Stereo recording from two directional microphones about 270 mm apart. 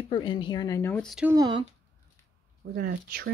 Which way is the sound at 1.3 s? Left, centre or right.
Centre.